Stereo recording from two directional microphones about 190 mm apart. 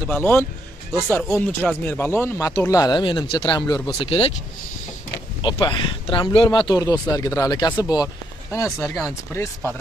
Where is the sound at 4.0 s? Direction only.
30° left (ahead or behind).